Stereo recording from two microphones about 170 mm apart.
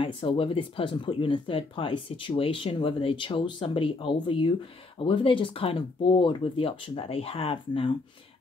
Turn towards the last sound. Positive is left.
turn(degrees=30)  # may be behind; listen again after turning